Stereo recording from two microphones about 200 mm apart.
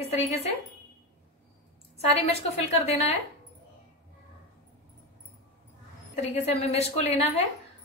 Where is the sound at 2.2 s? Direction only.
30° left (ahead or behind).